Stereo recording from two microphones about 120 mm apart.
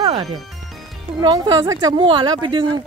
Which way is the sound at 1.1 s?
30° right (ahead or behind).